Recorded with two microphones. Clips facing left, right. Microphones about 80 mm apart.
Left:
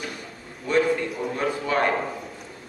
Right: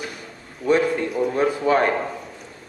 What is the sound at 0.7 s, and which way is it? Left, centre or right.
Speech, centre.